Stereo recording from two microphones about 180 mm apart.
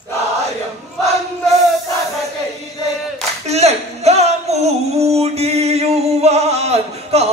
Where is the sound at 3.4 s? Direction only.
35° right (ahead or behind).